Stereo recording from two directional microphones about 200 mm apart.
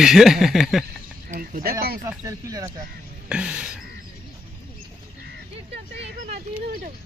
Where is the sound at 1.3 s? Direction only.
40° right (ahead or behind).